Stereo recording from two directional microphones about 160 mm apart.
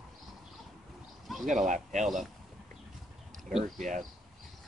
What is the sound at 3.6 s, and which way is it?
Speech, 55° right (ahead or behind).